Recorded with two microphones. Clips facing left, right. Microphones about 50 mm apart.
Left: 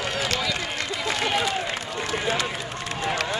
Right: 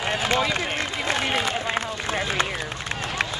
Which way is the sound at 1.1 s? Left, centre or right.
Right.